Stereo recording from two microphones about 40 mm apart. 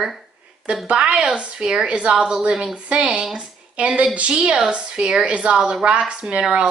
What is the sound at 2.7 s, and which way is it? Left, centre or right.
Speech, right.